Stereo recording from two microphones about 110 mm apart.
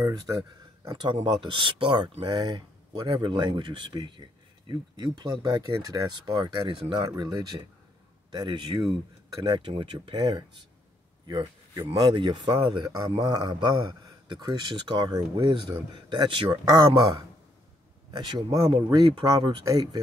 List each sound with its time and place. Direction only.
0.0 s speech: 35° right (ahead or behind)
0.9 s speech: 45° right (ahead or behind)
6.8 s speech: 60° right (ahead or behind)
7.2 s speech: 35° right (ahead or behind)
12.8 s speech: 30° right (ahead or behind)